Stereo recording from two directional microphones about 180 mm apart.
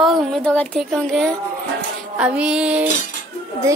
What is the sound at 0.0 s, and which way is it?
A woman's voice, centre (ahead or behind).